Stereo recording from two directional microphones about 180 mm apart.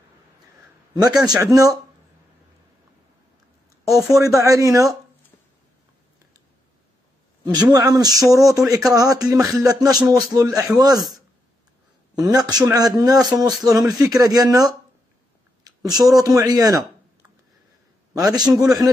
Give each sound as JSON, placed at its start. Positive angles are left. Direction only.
{"t": 1.2, "sound": "speech", "side_deg": -20}
{"t": 3.8, "sound": "speech", "side_deg": -15}
{"t": 7.5, "sound": "speech", "side_deg": -20}
{"t": 12.2, "sound": "speech", "side_deg": -20}
{"t": 15.6, "sound": "a sound", "side_deg": -20}
{"t": 16.2, "sound": "speech", "side_deg": -20}
{"t": 18.1, "sound": "speech", "side_deg": -20}